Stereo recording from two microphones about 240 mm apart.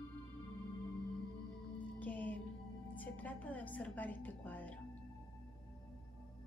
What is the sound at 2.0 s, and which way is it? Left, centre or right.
Music, centre.